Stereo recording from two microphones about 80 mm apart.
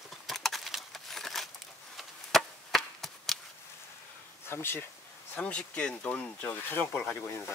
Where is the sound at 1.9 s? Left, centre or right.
Centre.